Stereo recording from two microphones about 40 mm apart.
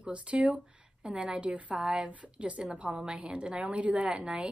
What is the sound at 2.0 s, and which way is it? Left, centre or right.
Speech, right.